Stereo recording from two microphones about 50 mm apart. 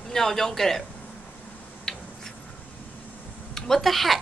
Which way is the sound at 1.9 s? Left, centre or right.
Centre.